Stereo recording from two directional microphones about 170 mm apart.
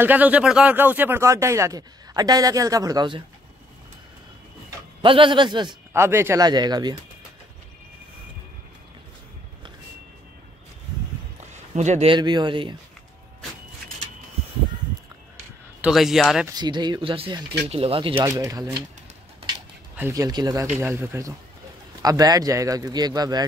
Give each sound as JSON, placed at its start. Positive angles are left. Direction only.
{"t": 0.0, "sound": "speech", "side_deg": -10}
{"t": 5.0, "sound": "speech", "side_deg": -30}
{"t": 5.9, "sound": "speech", "side_deg": -15}
{"t": 11.5, "sound": "a sound", "side_deg": -45}
{"t": 12.1, "sound": "speech", "side_deg": -25}
{"t": 15.8, "sound": "speech", "side_deg": 0}
{"t": 16.4, "sound": "speech", "side_deg": -25}
{"t": 18.4, "sound": "speech", "side_deg": -20}
{"t": 20.0, "sound": "speech", "side_deg": -20}